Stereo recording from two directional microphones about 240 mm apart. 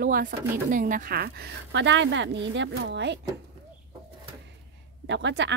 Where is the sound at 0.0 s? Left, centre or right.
Right.